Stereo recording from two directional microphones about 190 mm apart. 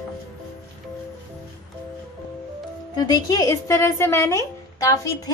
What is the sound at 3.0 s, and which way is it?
Speech, 20° left (ahead or behind).